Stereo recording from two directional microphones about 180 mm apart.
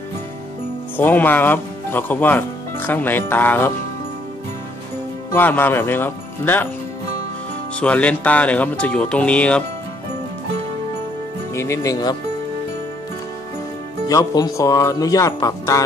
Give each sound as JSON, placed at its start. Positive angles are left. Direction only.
{"t": 0.9, "sound": "speech", "side_deg": 10}
{"t": 5.3, "sound": "speech", "side_deg": 10}
{"t": 7.8, "sound": "speech", "side_deg": 5}
{"t": 11.5, "sound": "speech", "side_deg": 15}
{"t": 14.0, "sound": "speech", "side_deg": 20}